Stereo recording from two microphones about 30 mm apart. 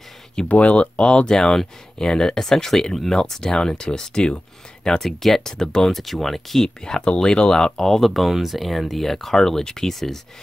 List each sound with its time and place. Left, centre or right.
0.5 s speech: left
1.0 s speech: left
1.4 s speech: centre
5.0 s speech: centre
5.5 s speech: left
5.9 s speech: centre
6.8 s speech: left
8.0 s speech: centre